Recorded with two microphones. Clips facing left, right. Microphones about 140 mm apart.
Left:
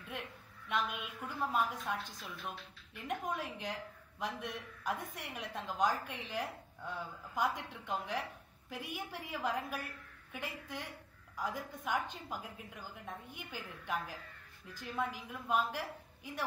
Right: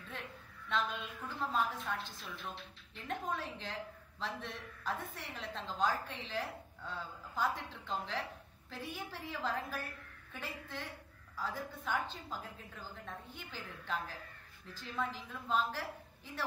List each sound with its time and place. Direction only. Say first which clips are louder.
0.7 s a woman's voice: even; 10° left (ahead or behind)